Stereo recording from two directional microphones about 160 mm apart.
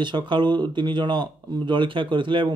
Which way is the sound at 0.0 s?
30° right (ahead or behind).